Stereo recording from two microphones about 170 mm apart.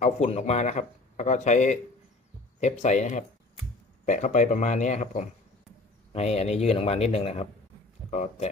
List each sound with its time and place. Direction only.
0.0 s speech: 40° left (ahead or behind)